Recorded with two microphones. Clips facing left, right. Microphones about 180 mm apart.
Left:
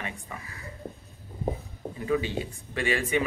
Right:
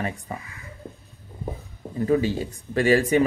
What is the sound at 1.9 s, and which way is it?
Speech, 40° right (ahead or behind).